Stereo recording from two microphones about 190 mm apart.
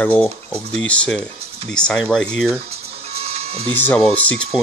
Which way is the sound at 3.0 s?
30° right (ahead or behind).